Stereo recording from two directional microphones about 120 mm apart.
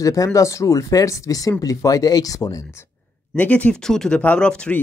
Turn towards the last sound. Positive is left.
turn(degrees=10)  # may be behind; listen again after turning